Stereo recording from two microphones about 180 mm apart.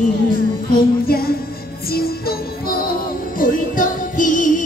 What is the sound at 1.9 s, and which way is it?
Music, 55° left (ahead or behind).